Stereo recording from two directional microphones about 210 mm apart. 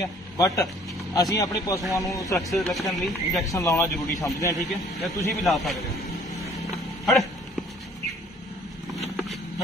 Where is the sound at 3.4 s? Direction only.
15° left (ahead or behind).